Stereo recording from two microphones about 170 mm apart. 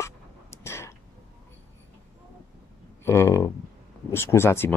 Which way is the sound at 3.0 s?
15° left (ahead or behind).